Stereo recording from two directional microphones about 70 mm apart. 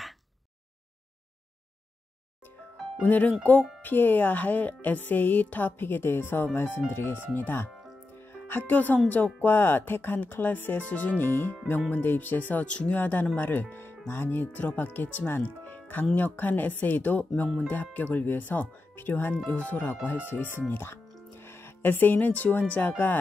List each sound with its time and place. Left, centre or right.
3.0 s speech: left
8.1 s music: left
9.1 s speech: left